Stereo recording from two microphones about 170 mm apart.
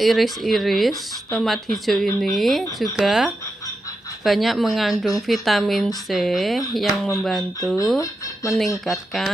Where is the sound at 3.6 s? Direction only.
20° left (ahead or behind).